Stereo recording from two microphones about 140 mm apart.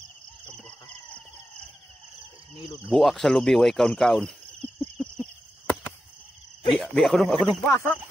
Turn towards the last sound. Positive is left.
turn(degrees=20)  # may be behind; listen again after turning